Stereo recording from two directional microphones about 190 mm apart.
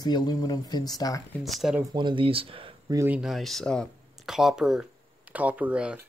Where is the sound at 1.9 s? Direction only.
25° right (ahead or behind).